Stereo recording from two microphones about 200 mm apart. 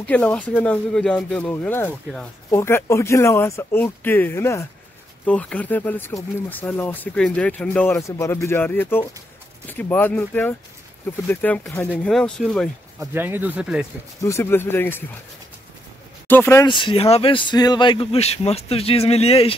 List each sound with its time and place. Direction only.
0.0 s speech: 5° left (ahead or behind)
13.0 s speech: 10° right (ahead or behind)
14.2 s speech: 15° left (ahead or behind)
16.3 s speech: 10° left (ahead or behind)
16.6 s a man's voice: 25° left (ahead or behind)